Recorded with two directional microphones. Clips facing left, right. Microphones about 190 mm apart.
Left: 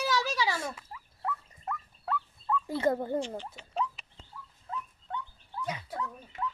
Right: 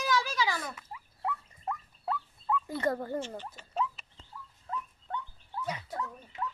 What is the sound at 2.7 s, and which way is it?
Speech, 25° left (ahead or behind).